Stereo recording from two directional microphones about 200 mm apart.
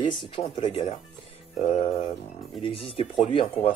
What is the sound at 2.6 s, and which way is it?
Speech, 25° left (ahead or behind).